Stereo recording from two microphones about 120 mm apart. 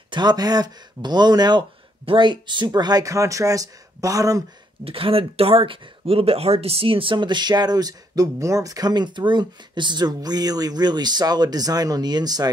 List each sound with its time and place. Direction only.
0.1 s speech: 35° right (ahead or behind)
4.8 s speech: 50° right (ahead or behind); by 12.4 s 35° right (ahead or behind)